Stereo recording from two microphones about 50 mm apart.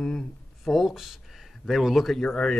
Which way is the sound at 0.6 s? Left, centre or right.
Centre.